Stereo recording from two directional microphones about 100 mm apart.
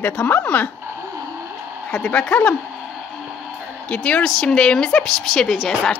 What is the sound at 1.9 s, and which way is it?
Speech, 10° left (ahead or behind).